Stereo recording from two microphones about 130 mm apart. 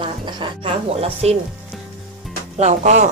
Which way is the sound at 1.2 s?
55° right (ahead or behind).